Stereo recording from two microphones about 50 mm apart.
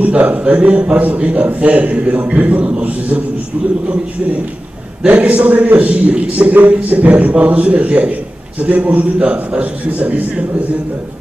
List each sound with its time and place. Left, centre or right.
0.0 s a man's voice: right
5.0 s a man's voice: right